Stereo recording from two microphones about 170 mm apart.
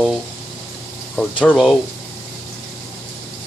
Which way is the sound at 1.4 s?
5° left (ahead or behind).